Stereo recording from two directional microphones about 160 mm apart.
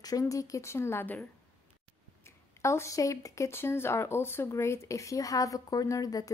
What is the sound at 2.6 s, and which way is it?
Speech, 15° left (ahead or behind).